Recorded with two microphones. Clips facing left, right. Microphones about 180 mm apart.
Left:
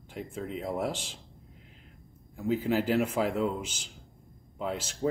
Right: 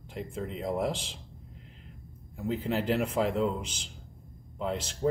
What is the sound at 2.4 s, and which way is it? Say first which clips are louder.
Speech: left 3 dB; 5° left (ahead or behind).